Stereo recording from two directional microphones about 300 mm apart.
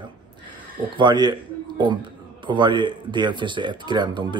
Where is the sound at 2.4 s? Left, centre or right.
Centre.